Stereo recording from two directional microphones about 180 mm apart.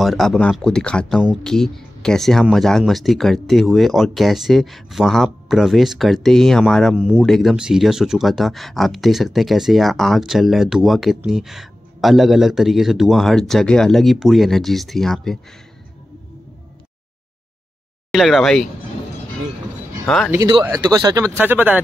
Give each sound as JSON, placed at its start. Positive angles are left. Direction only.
{"t": 0.0, "sound": "speech", "side_deg": 0}
{"t": 18.1, "sound": "speech", "side_deg": 0}
{"t": 20.6, "sound": "speech", "side_deg": -20}
{"t": 21.4, "sound": "speech", "side_deg": -10}